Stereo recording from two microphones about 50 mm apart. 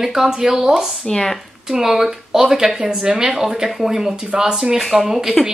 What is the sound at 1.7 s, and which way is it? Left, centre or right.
A woman's voice, centre.